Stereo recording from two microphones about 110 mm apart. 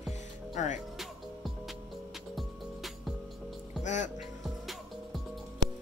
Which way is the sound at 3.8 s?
90° left.